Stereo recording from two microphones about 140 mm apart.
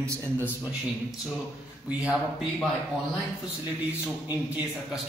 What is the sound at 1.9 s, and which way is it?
Speech, 10° right (ahead or behind).